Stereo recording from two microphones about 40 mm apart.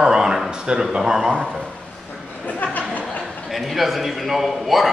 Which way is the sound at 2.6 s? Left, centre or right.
Left.